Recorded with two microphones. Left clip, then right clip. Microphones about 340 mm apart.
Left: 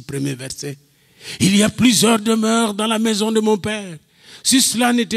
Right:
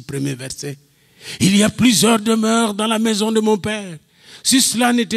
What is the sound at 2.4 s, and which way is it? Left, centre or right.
A man's voice, left.